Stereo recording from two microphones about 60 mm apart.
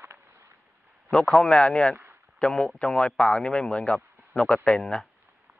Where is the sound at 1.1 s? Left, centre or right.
Centre.